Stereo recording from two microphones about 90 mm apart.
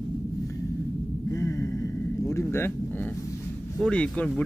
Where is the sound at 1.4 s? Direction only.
30° left (ahead or behind).